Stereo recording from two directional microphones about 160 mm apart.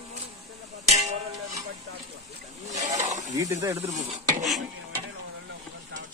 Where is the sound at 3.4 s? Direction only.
20° right (ahead or behind).